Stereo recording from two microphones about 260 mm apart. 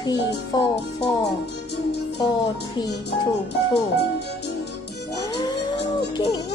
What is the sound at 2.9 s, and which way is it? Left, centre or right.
Speech, left.